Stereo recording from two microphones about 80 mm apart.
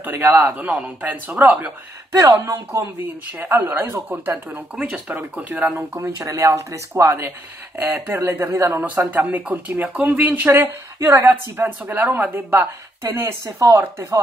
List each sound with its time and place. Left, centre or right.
0.0 s speech: right
2.1 s speech: right
3.3 s speech: right
4.7 s speech: centre
5.6 s speech: right
6.1 s speech: right
9.1 s speech: centre
10.5 s speech: right
11.8 s speech: centre
12.4 s speech: right
13.2 s speech: right